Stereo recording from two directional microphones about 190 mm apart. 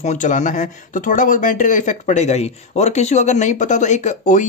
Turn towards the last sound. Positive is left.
turn(degrees=40)  # may be behind; listen again after turning